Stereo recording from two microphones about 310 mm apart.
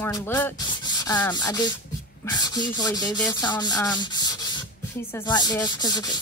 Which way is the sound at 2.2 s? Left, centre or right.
Centre.